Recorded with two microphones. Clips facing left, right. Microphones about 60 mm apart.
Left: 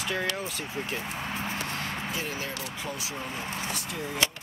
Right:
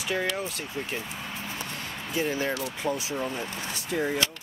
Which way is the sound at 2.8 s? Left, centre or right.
Right.